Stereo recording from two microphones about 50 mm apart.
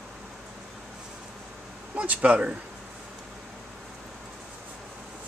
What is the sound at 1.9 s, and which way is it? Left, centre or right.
Speech, right.